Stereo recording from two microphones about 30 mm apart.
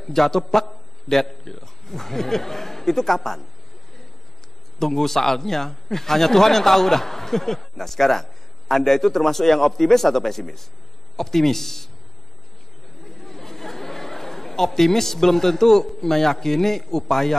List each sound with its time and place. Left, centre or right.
0.0 s a man's voice: centre
4.7 s a man's voice: centre
13.0 s chatter: centre
15.9 s a man's voice: centre